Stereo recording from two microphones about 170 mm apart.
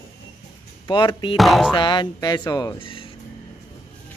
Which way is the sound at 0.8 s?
30° left (ahead or behind).